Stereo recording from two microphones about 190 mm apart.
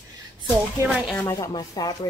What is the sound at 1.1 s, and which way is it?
Speech, 5° left (ahead or behind).